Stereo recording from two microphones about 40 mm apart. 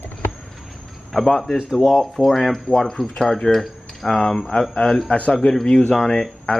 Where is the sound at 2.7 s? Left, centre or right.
Centre.